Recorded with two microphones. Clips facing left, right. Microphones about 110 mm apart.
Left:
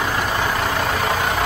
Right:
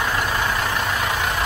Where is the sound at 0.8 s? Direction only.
35° left (ahead or behind).